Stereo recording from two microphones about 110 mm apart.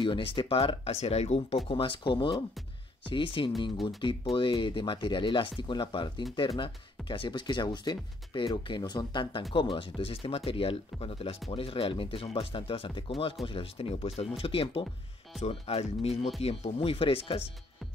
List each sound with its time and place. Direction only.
0.0 s speech: 50° left (ahead or behind); by 1.6 s 75° left (ahead or behind)
1.7 s speech: 50° left (ahead or behind)
15.4 s speech: 70° left (ahead or behind); by 17.4 s 55° left (ahead or behind)